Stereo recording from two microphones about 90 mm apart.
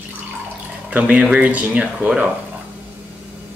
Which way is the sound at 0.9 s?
15° right (ahead or behind).